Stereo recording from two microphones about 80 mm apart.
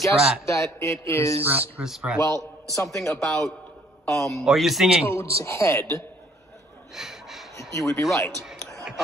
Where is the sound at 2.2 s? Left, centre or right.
Left.